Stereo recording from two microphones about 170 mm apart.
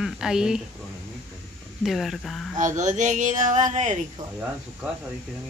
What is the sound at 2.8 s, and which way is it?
Speech, 45° right (ahead or behind).